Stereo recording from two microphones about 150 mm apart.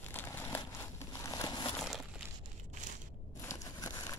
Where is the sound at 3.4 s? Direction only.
20° left (ahead or behind).